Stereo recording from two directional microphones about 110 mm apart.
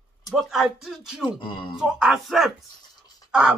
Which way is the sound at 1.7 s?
Centre (ahead or behind).